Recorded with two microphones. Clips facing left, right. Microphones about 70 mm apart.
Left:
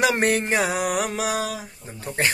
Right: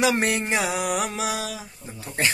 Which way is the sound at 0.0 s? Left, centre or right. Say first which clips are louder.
Left 2 dB; left.